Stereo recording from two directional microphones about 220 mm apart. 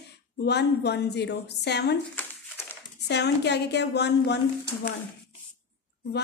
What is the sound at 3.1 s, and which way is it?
A woman's voice, 50° left (ahead or behind).